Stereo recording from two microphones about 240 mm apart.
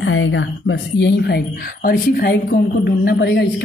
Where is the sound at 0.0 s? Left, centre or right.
Left.